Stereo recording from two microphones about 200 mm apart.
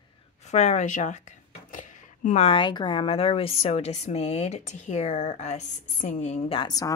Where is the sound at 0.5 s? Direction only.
35° left (ahead or behind).